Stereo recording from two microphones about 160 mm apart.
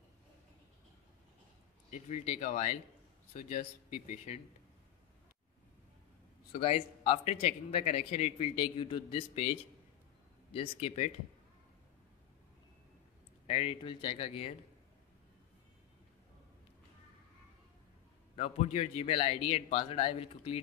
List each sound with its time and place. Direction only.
1.9 s speech: 50° left (ahead or behind)
6.5 s speech: 35° left (ahead or behind)
13.5 s speech: 35° left (ahead or behind)
18.3 s speech: 40° left (ahead or behind)